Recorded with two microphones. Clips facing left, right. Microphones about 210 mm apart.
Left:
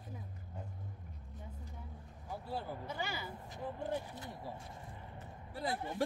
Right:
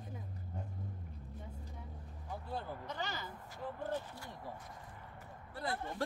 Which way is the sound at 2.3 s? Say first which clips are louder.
Left 1 dB; 10° left (ahead or behind).